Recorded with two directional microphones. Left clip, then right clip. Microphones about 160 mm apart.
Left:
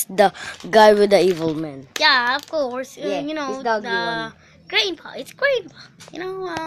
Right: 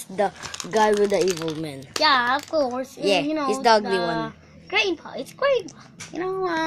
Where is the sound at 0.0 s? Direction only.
50° left (ahead or behind).